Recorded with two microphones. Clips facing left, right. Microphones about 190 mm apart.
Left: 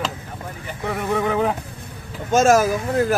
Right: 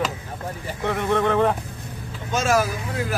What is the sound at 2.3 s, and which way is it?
Speech, 45° left (ahead or behind).